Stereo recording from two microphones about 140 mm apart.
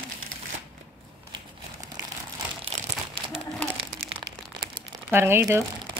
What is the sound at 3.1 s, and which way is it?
Crumpling, 40° right (ahead or behind).